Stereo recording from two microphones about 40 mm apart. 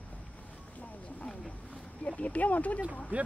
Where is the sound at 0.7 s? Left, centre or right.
Left.